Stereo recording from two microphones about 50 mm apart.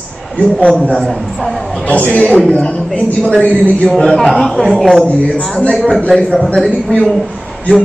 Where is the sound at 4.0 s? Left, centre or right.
Centre.